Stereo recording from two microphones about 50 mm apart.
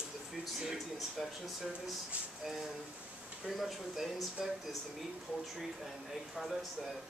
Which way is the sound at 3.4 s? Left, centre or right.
Centre.